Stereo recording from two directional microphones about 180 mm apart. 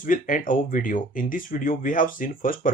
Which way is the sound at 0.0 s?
50° left (ahead or behind).